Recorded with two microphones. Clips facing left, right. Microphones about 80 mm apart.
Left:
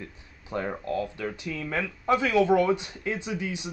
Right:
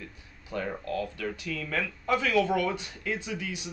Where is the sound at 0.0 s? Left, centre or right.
Left.